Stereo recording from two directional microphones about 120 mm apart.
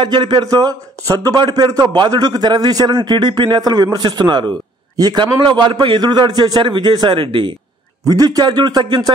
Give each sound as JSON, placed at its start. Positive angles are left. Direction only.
{"t": 0.0, "sound": "a man's voice", "side_deg": -40}
{"t": 8.0, "sound": "a man's voice", "side_deg": -30}